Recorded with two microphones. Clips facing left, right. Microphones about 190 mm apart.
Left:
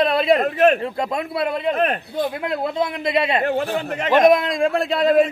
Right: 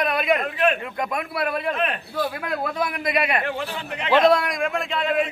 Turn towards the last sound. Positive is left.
turn(degrees=35)  # may be behind; listen again after turning